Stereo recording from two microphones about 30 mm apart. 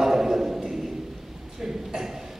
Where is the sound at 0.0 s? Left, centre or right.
Centre.